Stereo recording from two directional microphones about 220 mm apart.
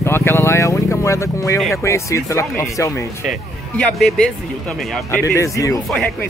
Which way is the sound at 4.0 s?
Centre (ahead or behind).